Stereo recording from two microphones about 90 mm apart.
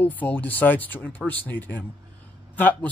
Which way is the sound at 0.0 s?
20° left (ahead or behind).